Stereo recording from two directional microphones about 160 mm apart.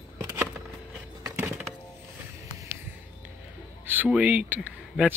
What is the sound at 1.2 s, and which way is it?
Music, 15° right (ahead or behind).